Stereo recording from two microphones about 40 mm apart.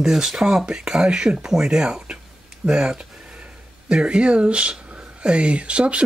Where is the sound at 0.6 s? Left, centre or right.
Right.